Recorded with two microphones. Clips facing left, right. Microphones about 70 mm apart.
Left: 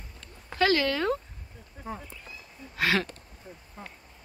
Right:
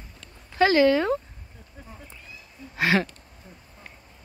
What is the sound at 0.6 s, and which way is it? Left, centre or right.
Speech, centre.